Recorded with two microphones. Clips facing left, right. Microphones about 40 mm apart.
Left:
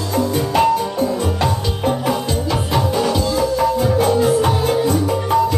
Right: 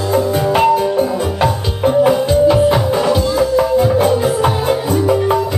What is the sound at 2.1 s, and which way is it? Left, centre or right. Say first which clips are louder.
Music: right 8 dB; centre.